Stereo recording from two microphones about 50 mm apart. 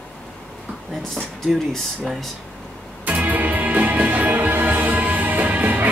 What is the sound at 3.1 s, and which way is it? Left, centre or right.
Music, right.